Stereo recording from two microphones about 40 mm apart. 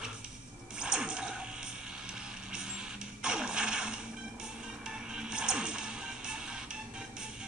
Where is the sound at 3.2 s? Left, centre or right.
Right.